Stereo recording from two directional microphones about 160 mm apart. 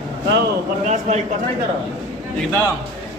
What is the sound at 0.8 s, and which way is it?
Speech, 45° right (ahead or behind).